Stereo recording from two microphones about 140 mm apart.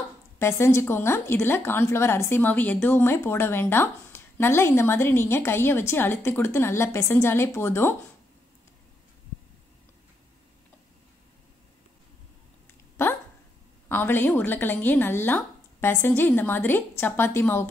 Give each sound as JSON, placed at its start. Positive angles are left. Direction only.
{"t": 0.4, "sound": "a woman's voice", "side_deg": 20}
{"t": 13.0, "sound": "dog", "side_deg": 20}
{"t": 13.8, "sound": "a woman's voice", "side_deg": 15}